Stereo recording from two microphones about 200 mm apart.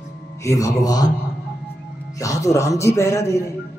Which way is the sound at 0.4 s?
15° left (ahead or behind).